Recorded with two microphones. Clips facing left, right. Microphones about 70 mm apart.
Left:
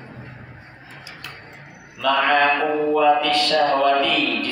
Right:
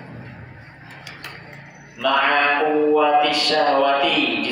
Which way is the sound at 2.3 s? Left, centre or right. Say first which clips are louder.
Even; right.